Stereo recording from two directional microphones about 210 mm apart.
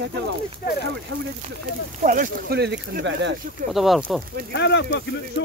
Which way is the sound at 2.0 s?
40° right (ahead or behind).